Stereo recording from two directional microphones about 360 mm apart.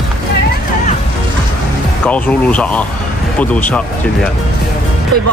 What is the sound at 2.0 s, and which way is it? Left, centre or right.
Speech, centre.